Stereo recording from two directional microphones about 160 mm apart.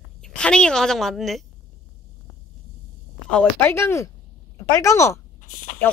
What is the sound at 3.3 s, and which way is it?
Speech, 10° left (ahead or behind).